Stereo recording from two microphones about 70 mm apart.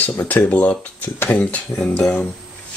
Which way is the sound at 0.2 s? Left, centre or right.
Left.